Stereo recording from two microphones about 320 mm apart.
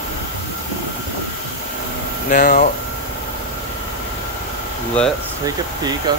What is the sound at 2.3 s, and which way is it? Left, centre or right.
Speech, left.